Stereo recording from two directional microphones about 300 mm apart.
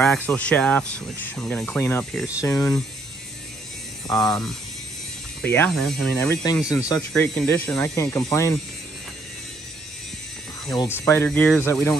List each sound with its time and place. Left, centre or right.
0.0 s speech: centre
4.1 s speech: centre
10.7 s speech: centre